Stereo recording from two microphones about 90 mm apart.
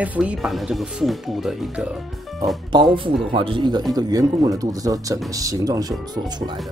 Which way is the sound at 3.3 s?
70° right (ahead or behind).